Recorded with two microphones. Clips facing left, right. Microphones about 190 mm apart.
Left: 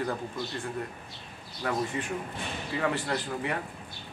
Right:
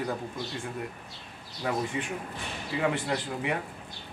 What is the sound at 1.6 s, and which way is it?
Speech, 15° right (ahead or behind).